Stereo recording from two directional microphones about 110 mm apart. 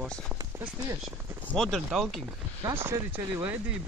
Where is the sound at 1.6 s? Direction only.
5° right (ahead or behind).